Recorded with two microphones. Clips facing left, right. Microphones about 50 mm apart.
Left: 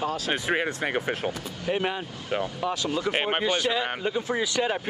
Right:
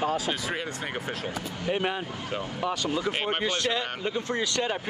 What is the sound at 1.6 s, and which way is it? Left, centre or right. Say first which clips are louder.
Speech: left 1 dB; centre.